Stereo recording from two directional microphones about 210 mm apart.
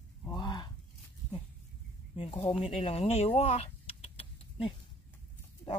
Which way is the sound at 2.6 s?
30° left (ahead or behind).